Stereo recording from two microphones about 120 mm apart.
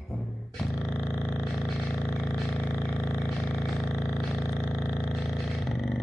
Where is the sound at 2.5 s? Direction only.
15° left (ahead or behind).